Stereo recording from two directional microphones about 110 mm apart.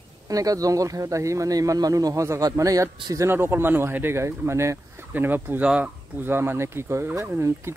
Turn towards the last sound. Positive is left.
turn(degrees=-25)  # may be behind; listen again after turning